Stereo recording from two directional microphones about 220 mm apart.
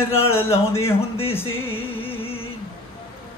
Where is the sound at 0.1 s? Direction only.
10° left (ahead or behind).